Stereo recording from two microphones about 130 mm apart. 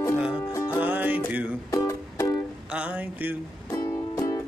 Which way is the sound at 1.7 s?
25° left (ahead or behind).